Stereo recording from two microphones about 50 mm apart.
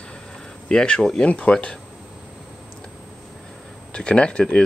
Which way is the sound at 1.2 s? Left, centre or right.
Left.